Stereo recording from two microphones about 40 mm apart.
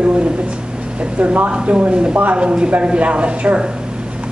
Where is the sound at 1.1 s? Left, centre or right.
Right.